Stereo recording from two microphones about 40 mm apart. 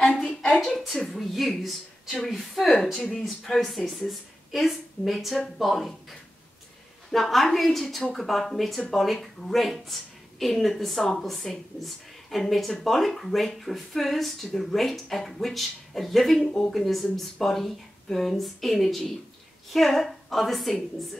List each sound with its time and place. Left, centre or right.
0.1 s a sound: centre
1.2 s a woman's voice: centre
7.1 s speech: centre
16.3 s speech: centre
16.7 s speech: centre